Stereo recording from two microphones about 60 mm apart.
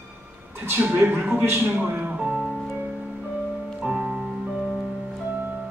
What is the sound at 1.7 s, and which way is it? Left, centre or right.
Music, right.